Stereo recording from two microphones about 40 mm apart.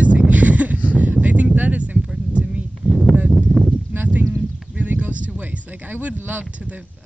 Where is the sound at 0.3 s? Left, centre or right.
Right.